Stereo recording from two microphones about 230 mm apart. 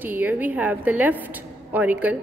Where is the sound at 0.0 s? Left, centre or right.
Centre.